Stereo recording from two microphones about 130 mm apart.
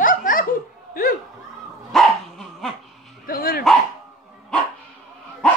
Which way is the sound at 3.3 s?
90° left.